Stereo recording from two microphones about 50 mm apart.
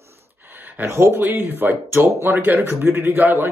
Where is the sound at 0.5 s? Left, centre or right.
Right.